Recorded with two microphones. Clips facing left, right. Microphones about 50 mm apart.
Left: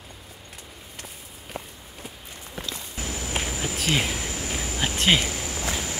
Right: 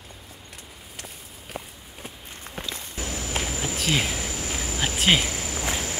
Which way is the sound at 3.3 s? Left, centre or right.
Centre.